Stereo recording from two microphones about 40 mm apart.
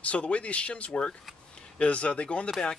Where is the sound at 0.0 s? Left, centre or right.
Left.